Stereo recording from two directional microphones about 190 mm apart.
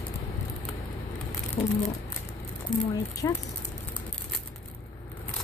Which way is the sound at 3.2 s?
20° left (ahead or behind).